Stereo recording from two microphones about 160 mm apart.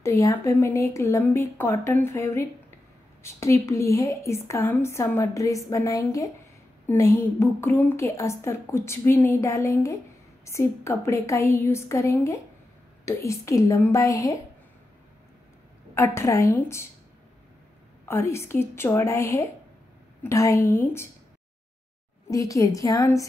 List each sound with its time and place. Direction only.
0.0 s a woman's voice: 20° left (ahead or behind)
15.9 s a woman's voice: 15° left (ahead or behind)
18.0 s a woman's voice: 15° left (ahead or behind)
22.3 s a woman's voice: 20° left (ahead or behind)